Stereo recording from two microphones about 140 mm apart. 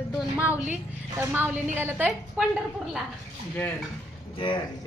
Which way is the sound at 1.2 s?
15° right (ahead or behind).